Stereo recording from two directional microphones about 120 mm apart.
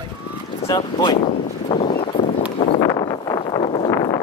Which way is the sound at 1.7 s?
40° left (ahead or behind).